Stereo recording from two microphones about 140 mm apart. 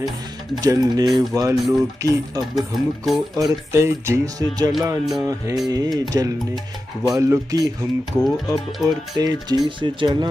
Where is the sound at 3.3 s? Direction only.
25° right (ahead or behind).